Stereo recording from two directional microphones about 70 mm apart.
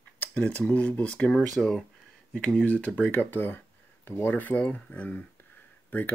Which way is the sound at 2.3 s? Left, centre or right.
Left.